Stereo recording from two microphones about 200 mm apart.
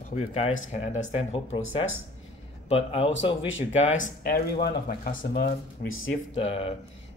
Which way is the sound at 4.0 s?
45° left (ahead or behind).